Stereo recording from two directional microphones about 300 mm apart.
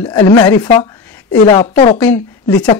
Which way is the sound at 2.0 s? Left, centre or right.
Centre.